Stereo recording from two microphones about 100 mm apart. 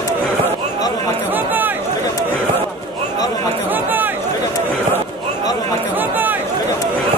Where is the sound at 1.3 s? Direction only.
20° right (ahead or behind).